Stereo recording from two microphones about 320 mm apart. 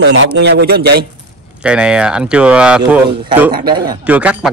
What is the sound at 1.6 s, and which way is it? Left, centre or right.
Speech, centre.